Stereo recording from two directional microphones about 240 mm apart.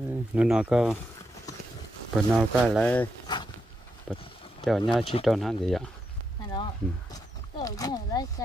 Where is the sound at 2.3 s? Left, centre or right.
Centre.